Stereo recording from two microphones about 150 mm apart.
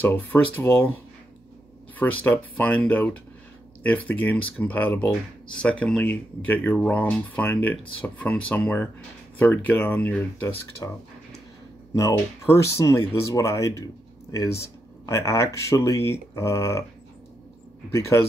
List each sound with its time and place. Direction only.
0.0 s speech: 10° left (ahead or behind)
2.2 s speech: 10° left (ahead or behind)
12.0 s speech: 20° left (ahead or behind)
17.9 s speech: 20° left (ahead or behind)